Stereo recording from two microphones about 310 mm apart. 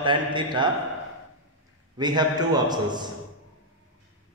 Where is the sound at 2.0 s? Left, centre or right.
Centre.